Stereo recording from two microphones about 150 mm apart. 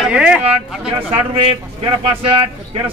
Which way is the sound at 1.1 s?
35° right (ahead or behind).